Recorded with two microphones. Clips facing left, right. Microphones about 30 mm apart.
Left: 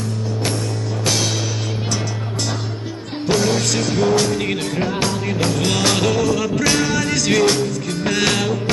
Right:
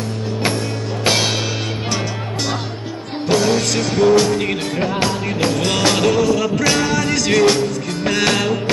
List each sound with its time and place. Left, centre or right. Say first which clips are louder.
1.0 s music: right 4 dB; right
3.3 s music: right 2 dB; centre